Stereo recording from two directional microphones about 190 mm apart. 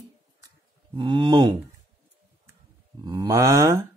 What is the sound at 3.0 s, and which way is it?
Speech, 20° right (ahead or behind).